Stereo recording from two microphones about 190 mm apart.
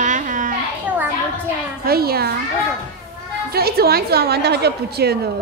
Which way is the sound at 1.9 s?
55° right (ahead or behind).